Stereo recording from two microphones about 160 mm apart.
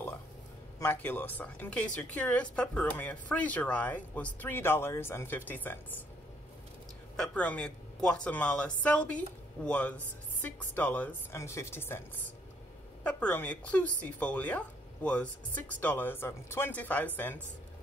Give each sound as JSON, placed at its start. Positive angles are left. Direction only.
{"t": 0.7, "sound": "speech", "side_deg": 10}
{"t": 7.2, "sound": "speech", "side_deg": 10}
{"t": 13.0, "sound": "speech", "side_deg": 10}